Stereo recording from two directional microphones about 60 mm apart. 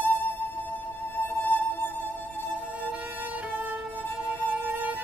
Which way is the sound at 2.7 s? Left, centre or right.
Right.